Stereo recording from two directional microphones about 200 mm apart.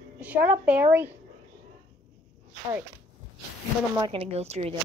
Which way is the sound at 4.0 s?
25° right (ahead or behind).